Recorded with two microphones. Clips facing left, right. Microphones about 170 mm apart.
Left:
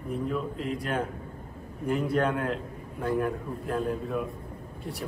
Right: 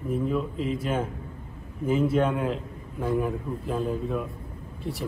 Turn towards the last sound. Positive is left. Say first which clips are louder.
# right 3 dB
turn(degrees=0)  # may be behind; listen again after turning